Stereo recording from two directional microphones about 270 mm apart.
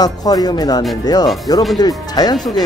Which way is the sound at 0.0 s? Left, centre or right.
Centre.